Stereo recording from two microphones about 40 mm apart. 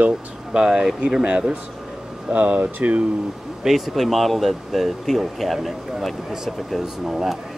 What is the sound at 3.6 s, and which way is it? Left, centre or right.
Speech, centre.